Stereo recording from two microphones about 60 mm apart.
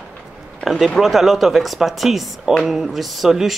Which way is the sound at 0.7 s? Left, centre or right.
Centre.